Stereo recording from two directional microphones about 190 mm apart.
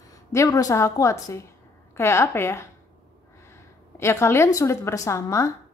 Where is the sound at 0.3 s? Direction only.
15° left (ahead or behind).